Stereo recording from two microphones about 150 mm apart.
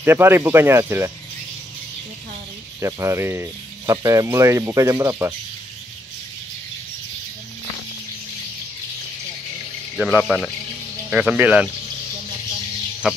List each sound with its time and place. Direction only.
0.0 s speech: 15° right (ahead or behind)
2.8 s speech: 20° right (ahead or behind)
10.1 s a man's voice: 5° left (ahead or behind)
11.1 s speech: 10° right (ahead or behind)
13.0 s speech: centre (ahead or behind)